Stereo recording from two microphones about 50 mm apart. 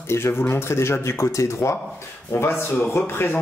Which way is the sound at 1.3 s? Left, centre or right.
Left.